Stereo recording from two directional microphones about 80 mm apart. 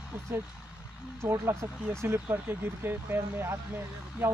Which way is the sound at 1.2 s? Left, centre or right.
Right.